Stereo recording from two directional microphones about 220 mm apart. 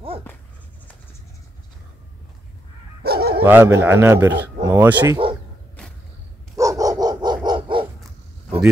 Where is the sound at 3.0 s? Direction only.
45° right (ahead or behind).